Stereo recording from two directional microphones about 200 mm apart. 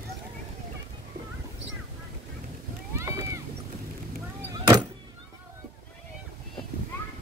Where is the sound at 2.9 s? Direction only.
15° right (ahead or behind).